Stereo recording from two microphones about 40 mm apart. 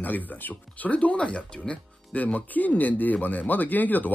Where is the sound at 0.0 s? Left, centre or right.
Left.